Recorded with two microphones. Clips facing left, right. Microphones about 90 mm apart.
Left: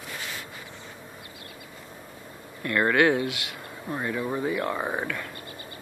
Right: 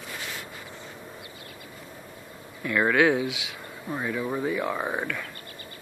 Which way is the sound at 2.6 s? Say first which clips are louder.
Even; centre (ahead or behind).